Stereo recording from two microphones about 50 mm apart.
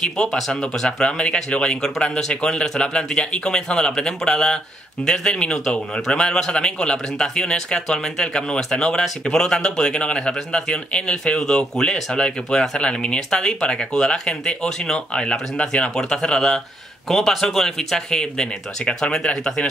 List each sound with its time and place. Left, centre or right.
0.0 s a man's voice: centre